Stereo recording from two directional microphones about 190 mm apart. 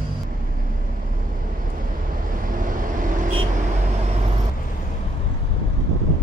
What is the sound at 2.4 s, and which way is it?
Vehicle, 45° right (ahead or behind).